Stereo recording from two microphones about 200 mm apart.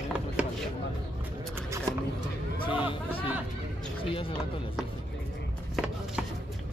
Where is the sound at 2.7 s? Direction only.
25° left (ahead or behind).